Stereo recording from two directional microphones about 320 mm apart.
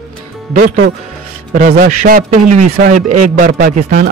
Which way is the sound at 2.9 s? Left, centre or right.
Right.